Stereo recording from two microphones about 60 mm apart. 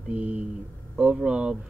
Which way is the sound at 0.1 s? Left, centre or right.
Right.